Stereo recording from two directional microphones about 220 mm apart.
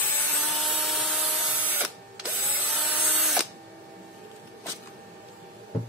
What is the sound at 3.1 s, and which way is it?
Tools, centre (ahead or behind).